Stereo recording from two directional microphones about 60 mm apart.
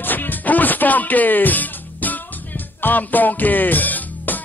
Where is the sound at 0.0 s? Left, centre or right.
Left.